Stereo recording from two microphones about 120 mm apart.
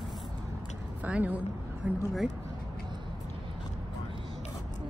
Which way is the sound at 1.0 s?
15° right (ahead or behind).